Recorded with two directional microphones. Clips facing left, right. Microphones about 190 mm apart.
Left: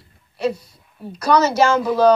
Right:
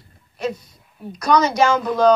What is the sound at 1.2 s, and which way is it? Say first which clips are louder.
Speech: left 1 dB; 5° left (ahead or behind).